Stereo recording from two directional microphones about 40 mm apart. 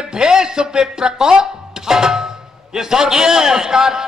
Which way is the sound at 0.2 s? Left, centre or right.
Centre.